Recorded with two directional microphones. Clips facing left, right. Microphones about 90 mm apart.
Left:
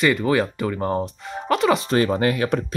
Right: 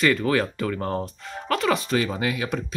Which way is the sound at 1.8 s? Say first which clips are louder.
Left 5 dB; 45° left (ahead or behind).